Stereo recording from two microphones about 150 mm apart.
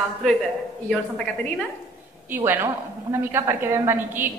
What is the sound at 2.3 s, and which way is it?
A woman's voice, 15° right (ahead or behind).